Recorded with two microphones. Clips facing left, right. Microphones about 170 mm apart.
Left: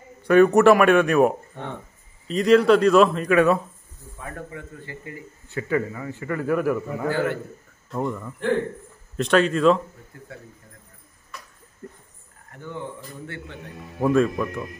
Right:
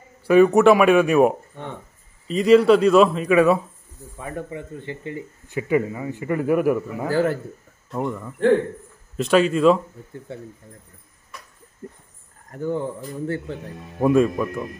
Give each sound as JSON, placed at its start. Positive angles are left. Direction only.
{"t": 0.2, "sound": "a man's voice", "side_deg": -5}
{"t": 4.2, "sound": "a man's voice", "side_deg": -20}
{"t": 7.1, "sound": "speech", "side_deg": -35}
{"t": 7.9, "sound": "a man's voice", "side_deg": -5}
{"t": 10.3, "sound": "speech", "side_deg": -25}
{"t": 11.8, "sound": "speech", "side_deg": -20}
{"t": 12.4, "sound": "speech", "side_deg": -40}
{"t": 13.9, "sound": "a man's voice", "side_deg": -10}